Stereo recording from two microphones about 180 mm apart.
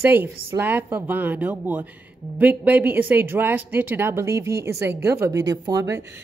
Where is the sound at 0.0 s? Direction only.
10° right (ahead or behind).